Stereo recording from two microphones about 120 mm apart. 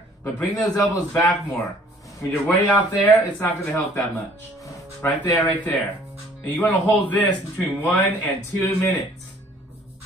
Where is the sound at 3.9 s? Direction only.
25° left (ahead or behind).